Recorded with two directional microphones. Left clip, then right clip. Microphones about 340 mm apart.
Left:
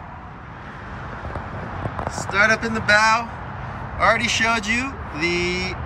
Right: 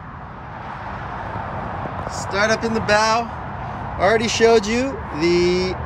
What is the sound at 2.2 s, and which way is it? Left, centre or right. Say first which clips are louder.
Speech: left 1 dB; centre.